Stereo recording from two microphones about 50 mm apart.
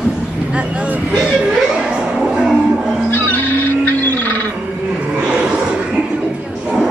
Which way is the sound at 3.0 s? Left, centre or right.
Left.